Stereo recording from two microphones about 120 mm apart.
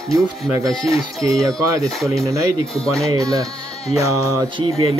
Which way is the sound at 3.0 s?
30° right (ahead or behind).